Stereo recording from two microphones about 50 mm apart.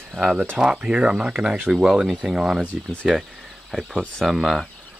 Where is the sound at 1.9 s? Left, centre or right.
Centre.